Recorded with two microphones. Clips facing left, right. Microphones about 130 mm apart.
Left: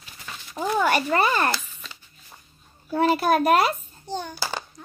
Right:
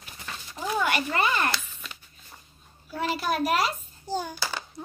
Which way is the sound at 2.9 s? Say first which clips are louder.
Left 8 dB; 50° left (ahead or behind).